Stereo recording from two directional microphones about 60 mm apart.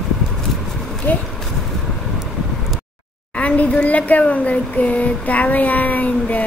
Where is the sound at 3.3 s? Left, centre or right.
Left.